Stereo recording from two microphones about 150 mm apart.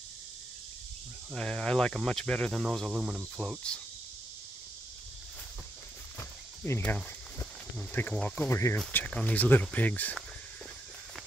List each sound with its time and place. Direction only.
1.3 s speech: 5° left (ahead or behind)
6.1 s walk: 15° left (ahead or behind)
7.9 s speech: 10° left (ahead or behind)